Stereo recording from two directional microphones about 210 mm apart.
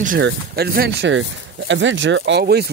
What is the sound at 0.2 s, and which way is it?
Speech, 50° right (ahead or behind).